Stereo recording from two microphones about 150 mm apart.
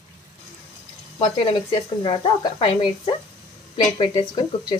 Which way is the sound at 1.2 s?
35° left (ahead or behind).